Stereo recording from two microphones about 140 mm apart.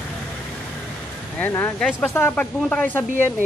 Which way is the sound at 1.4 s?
15° left (ahead or behind).